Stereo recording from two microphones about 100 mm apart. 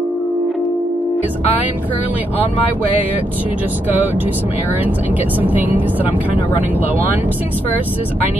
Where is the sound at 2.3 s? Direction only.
70° left (ahead or behind).